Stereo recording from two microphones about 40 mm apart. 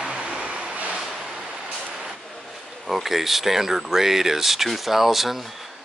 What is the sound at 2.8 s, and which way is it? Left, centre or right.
Speech, centre.